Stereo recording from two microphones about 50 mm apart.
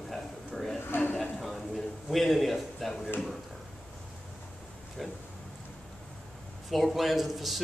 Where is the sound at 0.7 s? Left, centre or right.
Left.